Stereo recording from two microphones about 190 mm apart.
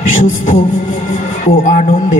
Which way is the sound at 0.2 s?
40° left (ahead or behind).